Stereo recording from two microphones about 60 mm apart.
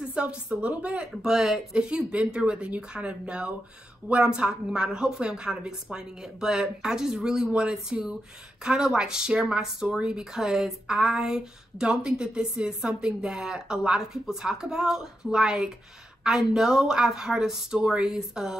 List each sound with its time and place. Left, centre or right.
0.1 s a woman's voice: centre
1.2 s speech: centre